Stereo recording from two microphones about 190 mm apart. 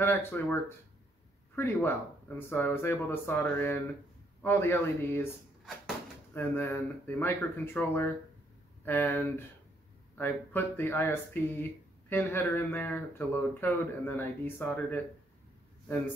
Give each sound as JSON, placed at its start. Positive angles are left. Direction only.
{"t": 0.0, "sound": "speech", "side_deg": 10}
{"t": 6.3, "sound": "speech", "side_deg": 10}